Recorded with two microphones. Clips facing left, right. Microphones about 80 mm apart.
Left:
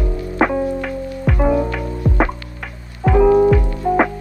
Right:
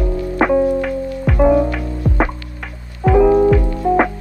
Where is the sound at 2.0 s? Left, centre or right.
Centre.